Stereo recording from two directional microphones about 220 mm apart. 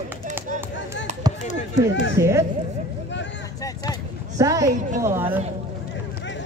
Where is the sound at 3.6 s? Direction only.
15° left (ahead or behind).